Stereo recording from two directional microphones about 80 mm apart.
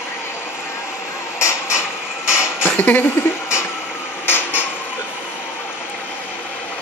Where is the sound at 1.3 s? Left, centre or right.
Left.